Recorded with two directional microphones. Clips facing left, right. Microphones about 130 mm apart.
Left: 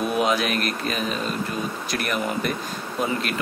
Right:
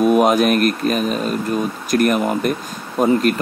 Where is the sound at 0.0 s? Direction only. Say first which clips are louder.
Right 9 dB; 50° right (ahead or behind).